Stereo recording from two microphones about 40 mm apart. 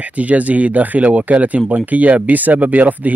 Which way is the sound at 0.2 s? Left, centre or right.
Right.